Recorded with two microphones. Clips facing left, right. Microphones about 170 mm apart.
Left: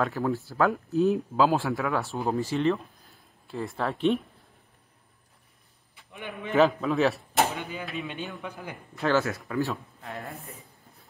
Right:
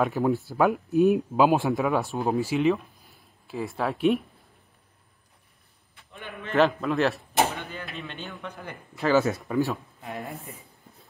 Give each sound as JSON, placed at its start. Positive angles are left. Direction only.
{"t": 0.0, "sound": "speech", "side_deg": -15}
{"t": 2.5, "sound": "a man's voice", "side_deg": -5}
{"t": 6.1, "sound": "a man's voice", "side_deg": 15}
{"t": 6.5, "sound": "a man's voice", "side_deg": 0}
{"t": 9.1, "sound": "speech", "side_deg": -20}
{"t": 9.7, "sound": "a man's voice", "side_deg": 0}